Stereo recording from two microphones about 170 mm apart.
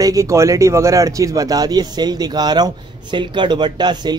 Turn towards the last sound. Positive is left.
turn(degrees=-25)  # may be behind; listen again after turning